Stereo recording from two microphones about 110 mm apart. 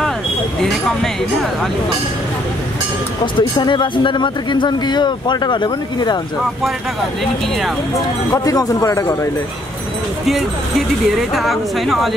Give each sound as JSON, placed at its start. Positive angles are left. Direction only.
{"t": 0.6, "sound": "speech", "side_deg": 5}
{"t": 3.3, "sound": "speech", "side_deg": 45}
{"t": 8.3, "sound": "speech", "side_deg": 30}
{"t": 11.1, "sound": "speech", "side_deg": 0}